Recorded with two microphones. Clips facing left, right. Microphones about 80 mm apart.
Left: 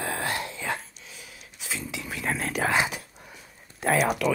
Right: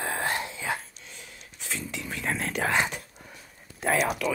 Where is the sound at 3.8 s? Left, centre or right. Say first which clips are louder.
Left 2 dB; centre.